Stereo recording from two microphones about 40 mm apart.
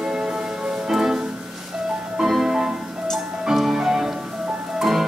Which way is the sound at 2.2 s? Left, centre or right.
Centre.